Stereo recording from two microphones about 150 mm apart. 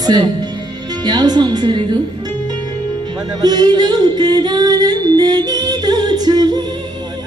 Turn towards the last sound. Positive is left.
turn(degrees=-30)  # may be behind; listen again after turning